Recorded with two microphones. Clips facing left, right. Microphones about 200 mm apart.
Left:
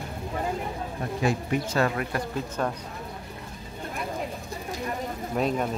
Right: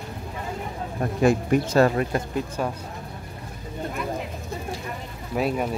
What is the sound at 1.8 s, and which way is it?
Speech, 30° right (ahead or behind).